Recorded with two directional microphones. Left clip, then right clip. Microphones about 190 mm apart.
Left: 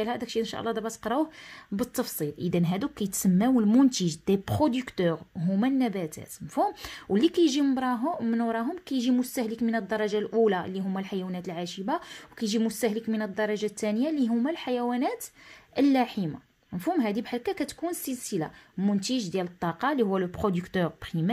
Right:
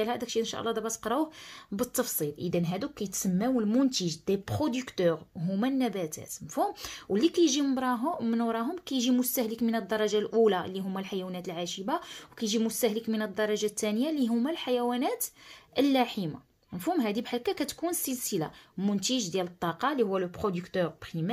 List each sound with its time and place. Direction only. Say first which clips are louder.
0.0 s a woman's voice: even; 20° left (ahead or behind); by 21.3 s 35° left (ahead or behind)